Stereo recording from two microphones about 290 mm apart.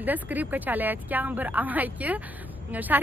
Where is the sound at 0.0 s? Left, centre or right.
Centre.